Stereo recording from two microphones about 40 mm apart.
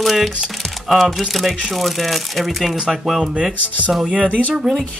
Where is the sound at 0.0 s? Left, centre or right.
Centre.